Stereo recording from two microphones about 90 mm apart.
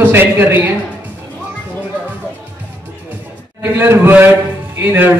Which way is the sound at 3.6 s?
25° right (ahead or behind).